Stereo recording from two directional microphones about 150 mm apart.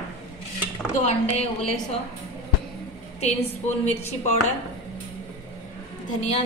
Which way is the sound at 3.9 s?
45° left (ahead or behind).